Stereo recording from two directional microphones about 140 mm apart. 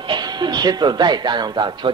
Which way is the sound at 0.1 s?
30° right (ahead or behind).